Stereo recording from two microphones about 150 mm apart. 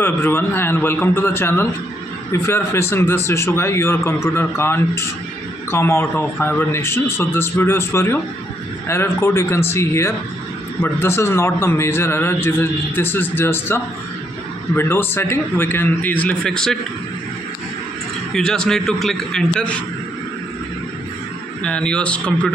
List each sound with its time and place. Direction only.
0.0 s a man's voice: 15° left (ahead or behind)
18.3 s a man's voice: 5° left (ahead or behind)
21.6 s a man's voice: 5° left (ahead or behind)